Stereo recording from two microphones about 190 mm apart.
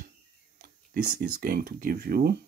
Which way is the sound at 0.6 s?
50° right (ahead or behind).